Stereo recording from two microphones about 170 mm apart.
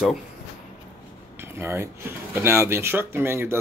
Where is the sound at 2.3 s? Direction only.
15° right (ahead or behind).